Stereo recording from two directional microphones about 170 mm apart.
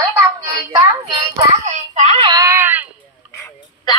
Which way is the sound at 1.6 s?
45° right (ahead or behind).